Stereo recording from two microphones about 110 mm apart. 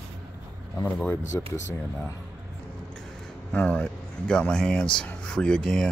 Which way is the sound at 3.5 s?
10° left (ahead or behind).